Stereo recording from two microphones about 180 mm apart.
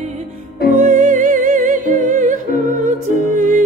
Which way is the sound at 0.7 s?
45° right (ahead or behind).